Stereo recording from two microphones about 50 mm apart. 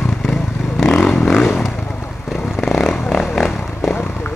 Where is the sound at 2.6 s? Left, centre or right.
Centre.